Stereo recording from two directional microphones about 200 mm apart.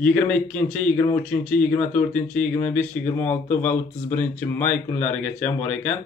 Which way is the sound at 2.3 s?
35° left (ahead or behind).